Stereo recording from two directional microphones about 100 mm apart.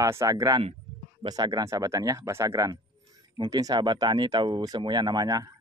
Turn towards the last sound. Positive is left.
turn(degrees=-40)  # may be behind; listen again after turning